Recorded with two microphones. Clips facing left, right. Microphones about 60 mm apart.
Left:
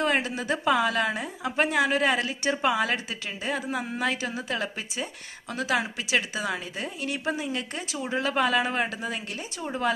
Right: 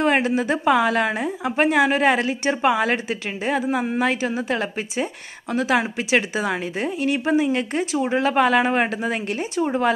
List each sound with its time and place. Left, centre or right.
0.0 s a woman's voice: right
7.8 s speech: right
8.1 s speech: right
9.6 s speech: right